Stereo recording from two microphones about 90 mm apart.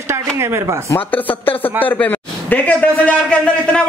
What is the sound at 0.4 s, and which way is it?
Speech, 30° right (ahead or behind).